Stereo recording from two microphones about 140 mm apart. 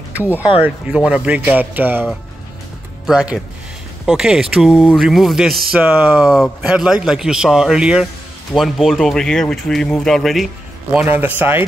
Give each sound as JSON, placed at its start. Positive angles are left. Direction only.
{"t": 0.2, "sound": "speech", "side_deg": -15}
{"t": 3.1, "sound": "speech", "side_deg": -5}
{"t": 10.9, "sound": "speech", "side_deg": -15}